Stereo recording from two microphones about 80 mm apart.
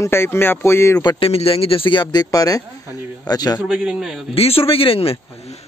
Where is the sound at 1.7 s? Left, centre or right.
Left.